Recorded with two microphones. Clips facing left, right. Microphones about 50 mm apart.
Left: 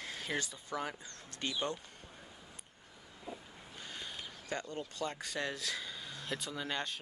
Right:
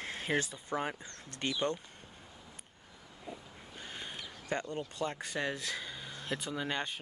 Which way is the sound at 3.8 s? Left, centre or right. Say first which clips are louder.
Right 2 dB; right.